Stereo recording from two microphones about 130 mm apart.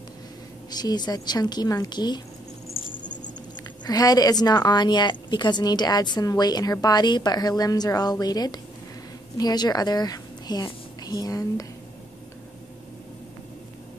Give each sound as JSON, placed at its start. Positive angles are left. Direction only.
{"t": 0.7, "sound": "a woman's voice", "side_deg": 30}
{"t": 3.8, "sound": "a woman's voice", "side_deg": 30}